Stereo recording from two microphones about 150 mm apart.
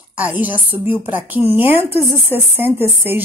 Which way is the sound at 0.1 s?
10° right (ahead or behind).